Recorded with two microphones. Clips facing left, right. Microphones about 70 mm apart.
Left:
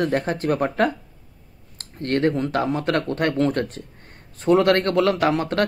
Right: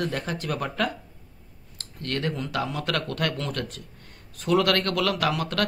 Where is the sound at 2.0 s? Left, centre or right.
Left.